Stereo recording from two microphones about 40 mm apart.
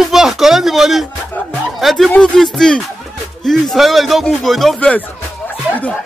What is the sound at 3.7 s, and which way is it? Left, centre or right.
Speech, centre.